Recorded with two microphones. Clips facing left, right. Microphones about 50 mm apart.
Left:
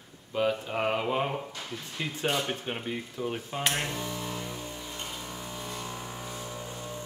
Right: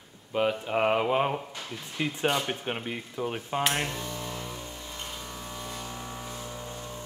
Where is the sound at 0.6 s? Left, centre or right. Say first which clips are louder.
Right 4 dB; centre.